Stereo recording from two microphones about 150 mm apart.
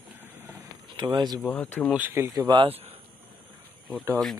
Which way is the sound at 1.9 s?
15° right (ahead or behind).